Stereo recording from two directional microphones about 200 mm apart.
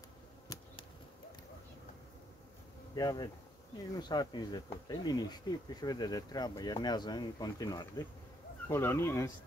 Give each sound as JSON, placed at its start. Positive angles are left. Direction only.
{"t": 2.9, "sound": "speech", "side_deg": 20}